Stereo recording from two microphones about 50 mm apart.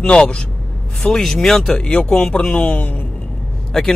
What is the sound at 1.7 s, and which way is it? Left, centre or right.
A man's voice, left.